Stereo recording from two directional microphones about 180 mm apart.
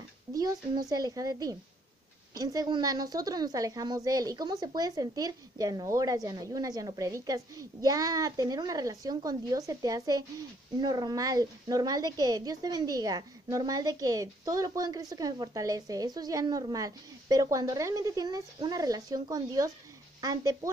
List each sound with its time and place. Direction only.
0.3 s a woman's voice: 20° right (ahead or behind)